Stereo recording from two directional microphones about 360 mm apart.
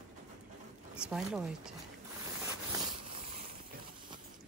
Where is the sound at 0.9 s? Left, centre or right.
Centre.